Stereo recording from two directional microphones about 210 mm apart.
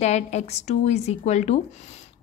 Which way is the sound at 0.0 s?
30° left (ahead or behind).